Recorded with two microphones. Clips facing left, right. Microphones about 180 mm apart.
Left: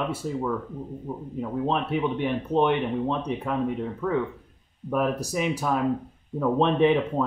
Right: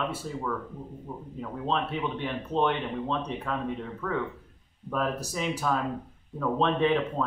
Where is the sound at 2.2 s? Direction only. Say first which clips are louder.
Left 3 dB; 15° left (ahead or behind).